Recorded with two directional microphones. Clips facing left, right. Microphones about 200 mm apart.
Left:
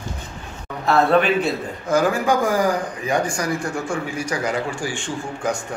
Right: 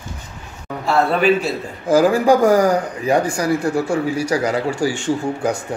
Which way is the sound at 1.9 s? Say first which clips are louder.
Right 6 dB; 35° right (ahead or behind).